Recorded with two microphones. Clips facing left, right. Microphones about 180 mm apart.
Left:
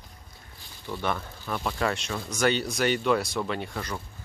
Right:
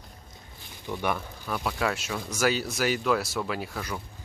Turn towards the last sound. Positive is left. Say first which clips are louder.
# left 1 dB
turn(degrees=-5)  # may be behind; listen again after turning